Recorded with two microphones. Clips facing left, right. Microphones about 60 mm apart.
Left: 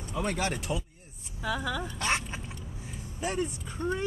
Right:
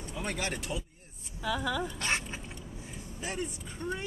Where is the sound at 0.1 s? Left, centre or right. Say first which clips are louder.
Left 5 dB; centre.